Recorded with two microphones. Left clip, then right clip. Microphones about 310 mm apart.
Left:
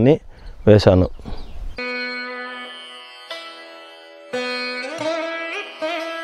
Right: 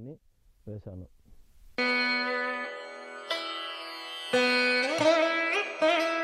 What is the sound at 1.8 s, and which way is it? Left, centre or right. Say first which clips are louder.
Music: left 1 dB; centre.